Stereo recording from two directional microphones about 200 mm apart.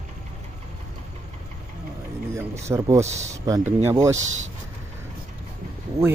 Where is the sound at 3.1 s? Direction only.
35° right (ahead or behind).